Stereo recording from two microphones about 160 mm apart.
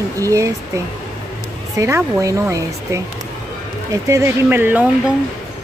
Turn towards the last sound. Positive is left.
turn(degrees=-10)  # may be behind; listen again after turning